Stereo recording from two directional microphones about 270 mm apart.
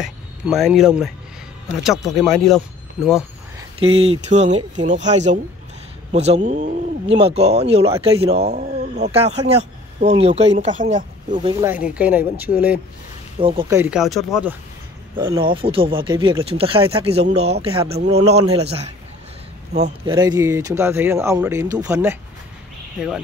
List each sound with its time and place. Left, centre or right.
0.0 s speech: centre
2.1 s speech: centre
3.5 s speech: right
11.3 s speech: centre
11.7 s speech: centre
13.4 s speech: centre
15.1 s speech: centre